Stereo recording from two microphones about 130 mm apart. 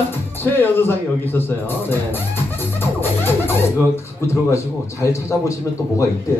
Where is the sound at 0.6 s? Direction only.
15° left (ahead or behind).